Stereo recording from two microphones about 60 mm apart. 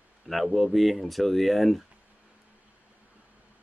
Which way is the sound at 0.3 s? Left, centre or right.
Centre.